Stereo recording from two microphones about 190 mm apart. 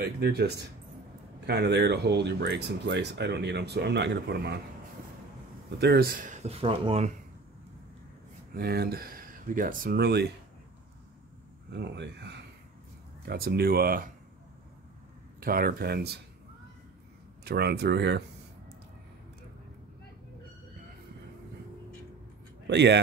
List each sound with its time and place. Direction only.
0.0 s speech: 55° right (ahead or behind)
5.8 s speech: 55° right (ahead or behind); by 7.1 s 30° right (ahead or behind)
8.5 s speech: 55° right (ahead or behind)
11.7 s speech: 65° right (ahead or behind)
13.2 s speech: 55° right (ahead or behind)
15.4 s speech: 50° right (ahead or behind)
17.5 s speech: 55° right (ahead or behind)
22.7 s speech: 65° right (ahead or behind)